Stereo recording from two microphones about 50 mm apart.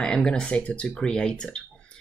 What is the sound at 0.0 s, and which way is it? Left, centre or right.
Speech, centre.